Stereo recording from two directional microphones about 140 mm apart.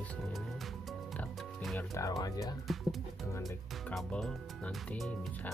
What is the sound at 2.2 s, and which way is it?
Speech, 25° left (ahead or behind).